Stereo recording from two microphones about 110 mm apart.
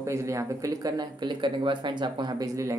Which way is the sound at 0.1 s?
25° right (ahead or behind).